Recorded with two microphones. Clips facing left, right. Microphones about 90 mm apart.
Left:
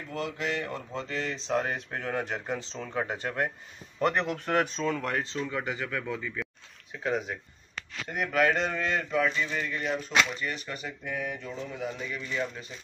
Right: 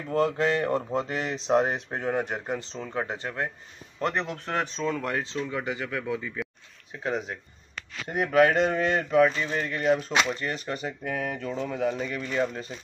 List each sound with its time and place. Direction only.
0.1 s speech: 40° right (ahead or behind); by 6.5 s 10° right (ahead or behind)
7.0 s speech: centre (ahead or behind)
8.1 s a man's voice: 35° right (ahead or behind); by 10.0 s 50° right (ahead or behind)
10.4 s a man's voice: 30° right (ahead or behind)
11.1 s speech: 45° right (ahead or behind)